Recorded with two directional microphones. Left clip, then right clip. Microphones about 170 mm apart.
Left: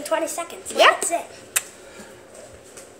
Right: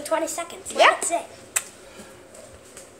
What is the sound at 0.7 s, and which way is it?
Speech, 25° left (ahead or behind).